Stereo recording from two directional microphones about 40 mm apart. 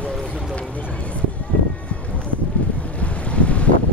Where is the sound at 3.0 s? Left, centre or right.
Left.